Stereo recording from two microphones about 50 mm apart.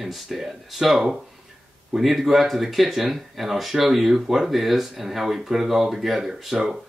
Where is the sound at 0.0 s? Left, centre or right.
Centre.